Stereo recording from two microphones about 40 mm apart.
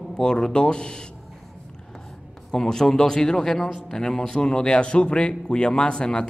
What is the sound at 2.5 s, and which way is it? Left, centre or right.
A man's voice, centre.